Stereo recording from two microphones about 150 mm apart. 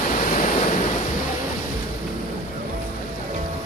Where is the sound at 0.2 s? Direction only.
55° left (ahead or behind).